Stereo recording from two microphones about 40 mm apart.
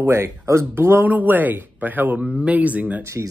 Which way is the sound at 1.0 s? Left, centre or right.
Right.